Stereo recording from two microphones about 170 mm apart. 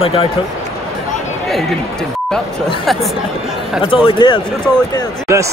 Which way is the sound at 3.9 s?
30° left (ahead or behind).